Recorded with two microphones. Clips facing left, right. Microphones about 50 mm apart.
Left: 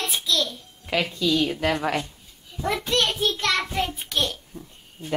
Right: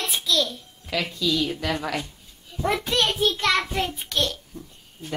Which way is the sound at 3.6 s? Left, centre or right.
Centre.